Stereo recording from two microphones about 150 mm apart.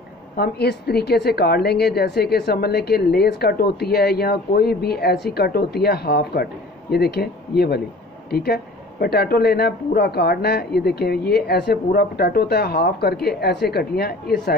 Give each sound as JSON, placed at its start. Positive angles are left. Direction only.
{"t": 0.4, "sound": "a woman's voice", "side_deg": 90}